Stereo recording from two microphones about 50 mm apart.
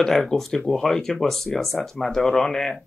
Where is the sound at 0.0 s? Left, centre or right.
Centre.